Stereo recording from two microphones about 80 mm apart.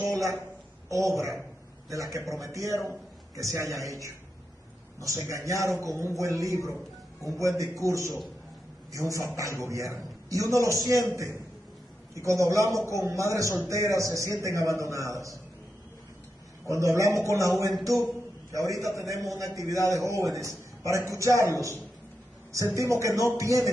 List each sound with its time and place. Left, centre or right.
0.0 s a sound: right
0.8 s a man's voice: right
16.6 s a man's voice: right